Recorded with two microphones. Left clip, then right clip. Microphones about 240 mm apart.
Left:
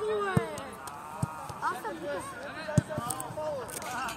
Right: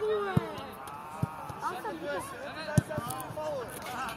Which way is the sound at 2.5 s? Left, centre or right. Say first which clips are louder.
Left 1 dB; centre.